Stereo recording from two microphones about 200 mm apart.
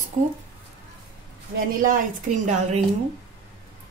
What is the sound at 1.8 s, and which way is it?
A woman's voice, 40° right (ahead or behind).